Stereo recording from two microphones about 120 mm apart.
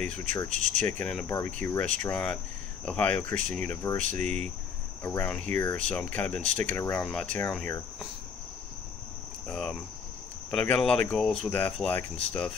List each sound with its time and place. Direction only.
0.0 s speech: 10° left (ahead or behind)
6.8 s cricket: 20° left (ahead or behind)
7.1 s speech: 10° left (ahead or behind)
7.4 s cricket: 20° left (ahead or behind)
9.5 s speech: 10° left (ahead or behind)
11.5 s speech: 15° left (ahead or behind)